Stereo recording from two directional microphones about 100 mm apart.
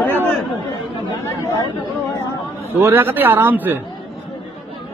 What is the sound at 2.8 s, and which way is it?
Speech, 25° right (ahead or behind).